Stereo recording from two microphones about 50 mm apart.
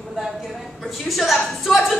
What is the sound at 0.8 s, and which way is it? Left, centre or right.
A woman's voice, centre.